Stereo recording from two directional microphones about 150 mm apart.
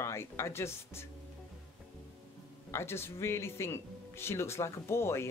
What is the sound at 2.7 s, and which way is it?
Speech, 15° left (ahead or behind).